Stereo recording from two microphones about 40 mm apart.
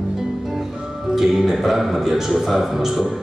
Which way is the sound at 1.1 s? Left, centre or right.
Centre.